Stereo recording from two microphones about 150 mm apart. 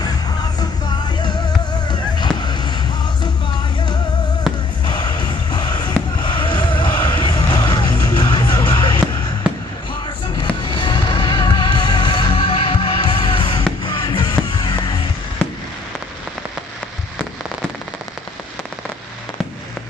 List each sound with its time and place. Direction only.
0.0 s music: 25° left (ahead or behind)
1.9 s a sound: 30° left (ahead or behind)
4.8 s music: 30° left (ahead or behind)
6.2 s fireworks: 30° left (ahead or behind)
6.8 s music: 30° left (ahead or behind)
9.5 s basketball bounce: 5° right (ahead or behind)
10.3 s music: 30° left (ahead or behind)